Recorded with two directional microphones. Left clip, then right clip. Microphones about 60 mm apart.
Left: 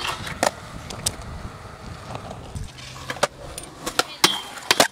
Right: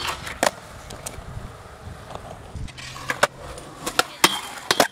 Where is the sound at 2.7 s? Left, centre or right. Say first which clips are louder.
Right 3 dB; right.